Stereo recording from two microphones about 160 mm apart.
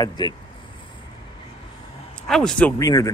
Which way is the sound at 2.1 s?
5° left (ahead or behind).